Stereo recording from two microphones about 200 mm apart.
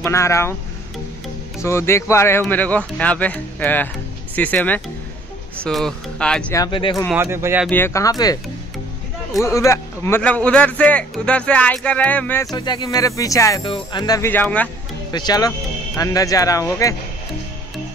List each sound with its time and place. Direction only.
0.0 s speech: 15° left (ahead or behind)
1.6 s speech: 15° left (ahead or behind)
6.5 s speech: 20° left (ahead or behind)
7.2 s speech: 10° right (ahead or behind)
7.7 s speech: 15° left (ahead or behind)
9.4 s speech: 15° left (ahead or behind)
12.5 s speech: 20° left (ahead or behind)
15.1 s speech: 20° left (ahead or behind)